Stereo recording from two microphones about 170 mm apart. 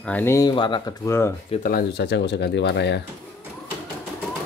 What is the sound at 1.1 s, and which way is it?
Speech, 15° left (ahead or behind).